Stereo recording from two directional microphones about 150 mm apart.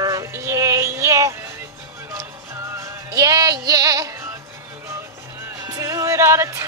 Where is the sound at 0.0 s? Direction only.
20° right (ahead or behind).